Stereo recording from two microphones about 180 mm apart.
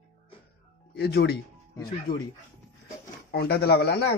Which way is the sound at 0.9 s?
65° left (ahead or behind).